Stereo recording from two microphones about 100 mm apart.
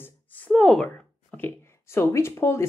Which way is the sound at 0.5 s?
5° left (ahead or behind).